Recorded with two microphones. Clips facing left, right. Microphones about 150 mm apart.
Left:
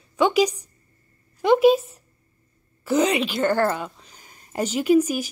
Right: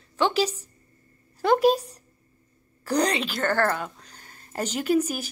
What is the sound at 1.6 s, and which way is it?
Speech, 40° right (ahead or behind).